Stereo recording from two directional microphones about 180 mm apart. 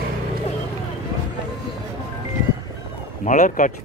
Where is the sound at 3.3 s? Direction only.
45° left (ahead or behind).